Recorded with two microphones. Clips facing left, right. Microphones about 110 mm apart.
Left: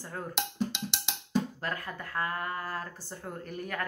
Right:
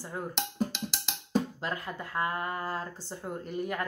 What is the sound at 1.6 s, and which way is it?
Speech, 20° right (ahead or behind).